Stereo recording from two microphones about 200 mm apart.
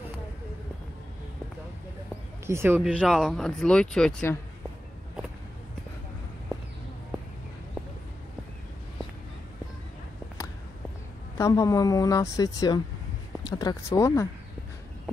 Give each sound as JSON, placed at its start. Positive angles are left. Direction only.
{"t": 2.4, "sound": "speech", "side_deg": -10}
{"t": 11.3, "sound": "speech", "side_deg": 15}